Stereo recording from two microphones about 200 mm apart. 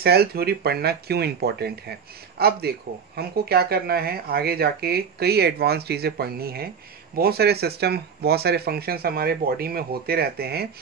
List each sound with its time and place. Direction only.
0.0 s speech: 50° right (ahead or behind)